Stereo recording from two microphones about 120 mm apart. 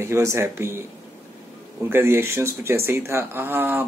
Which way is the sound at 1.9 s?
20° right (ahead or behind).